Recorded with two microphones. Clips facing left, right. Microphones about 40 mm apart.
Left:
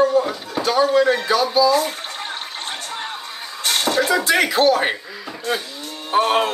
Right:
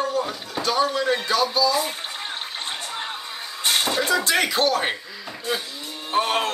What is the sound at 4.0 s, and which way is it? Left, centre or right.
Speech, centre.